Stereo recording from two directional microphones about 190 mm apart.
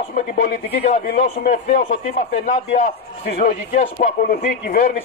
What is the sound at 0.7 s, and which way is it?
A man's voice, 35° left (ahead or behind).